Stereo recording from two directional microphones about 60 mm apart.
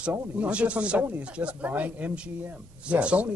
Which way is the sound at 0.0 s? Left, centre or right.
Right.